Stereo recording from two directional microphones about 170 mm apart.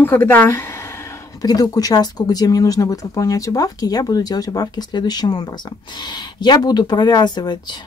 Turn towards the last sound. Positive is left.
turn(degrees=25)  # may be behind; listen again after turning